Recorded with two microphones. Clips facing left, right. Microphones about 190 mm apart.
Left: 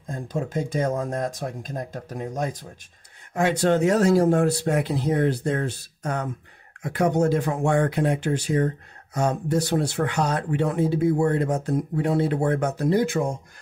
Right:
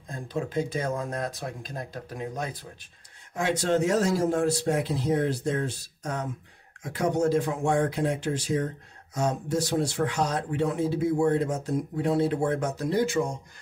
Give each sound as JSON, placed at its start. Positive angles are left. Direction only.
{"t": 0.1, "sound": "speech", "side_deg": 45}
{"t": 3.3, "sound": "speech", "side_deg": 60}